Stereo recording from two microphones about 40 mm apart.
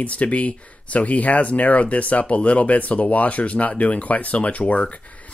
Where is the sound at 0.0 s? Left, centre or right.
Left.